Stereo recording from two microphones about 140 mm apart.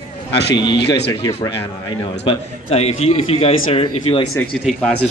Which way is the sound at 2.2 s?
45° left (ahead or behind).